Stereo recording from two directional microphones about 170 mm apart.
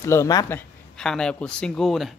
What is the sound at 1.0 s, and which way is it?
Speech, 5° left (ahead or behind).